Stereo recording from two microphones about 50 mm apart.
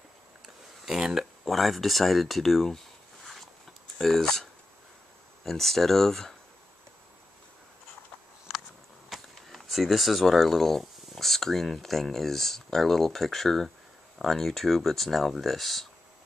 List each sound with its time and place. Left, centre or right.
0.8 s speech: centre
4.0 s speech: centre
9.1 s speech: centre